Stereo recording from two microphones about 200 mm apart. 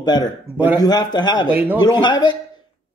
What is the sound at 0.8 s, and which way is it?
Speech, 20° left (ahead or behind).